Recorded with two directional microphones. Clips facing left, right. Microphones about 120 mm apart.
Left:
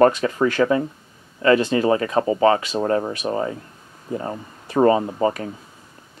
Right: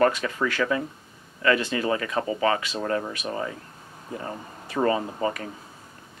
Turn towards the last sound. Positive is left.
turn(degrees=30)  # may be behind; listen again after turning